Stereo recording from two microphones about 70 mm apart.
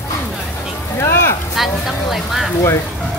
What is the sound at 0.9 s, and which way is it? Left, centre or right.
Speech, left.